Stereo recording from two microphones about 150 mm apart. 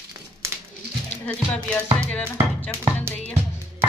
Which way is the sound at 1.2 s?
10° left (ahead or behind).